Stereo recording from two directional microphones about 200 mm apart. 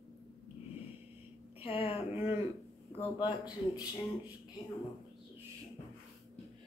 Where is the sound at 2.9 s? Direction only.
20° left (ahead or behind).